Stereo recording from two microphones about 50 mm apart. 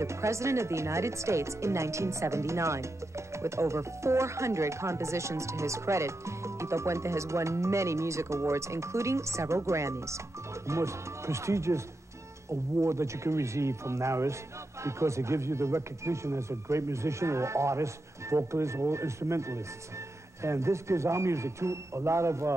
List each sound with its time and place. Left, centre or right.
0.0 s speech: right